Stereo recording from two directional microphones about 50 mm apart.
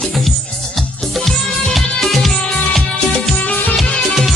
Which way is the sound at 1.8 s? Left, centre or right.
Centre.